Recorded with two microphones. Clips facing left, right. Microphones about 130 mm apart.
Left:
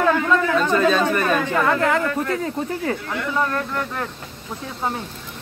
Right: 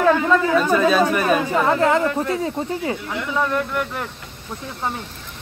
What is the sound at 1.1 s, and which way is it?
Speech, 10° right (ahead or behind).